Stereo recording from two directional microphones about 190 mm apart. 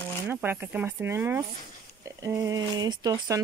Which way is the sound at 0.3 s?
10° right (ahead or behind).